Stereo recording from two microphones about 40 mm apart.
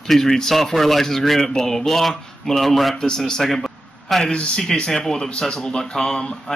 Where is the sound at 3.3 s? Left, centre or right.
Centre.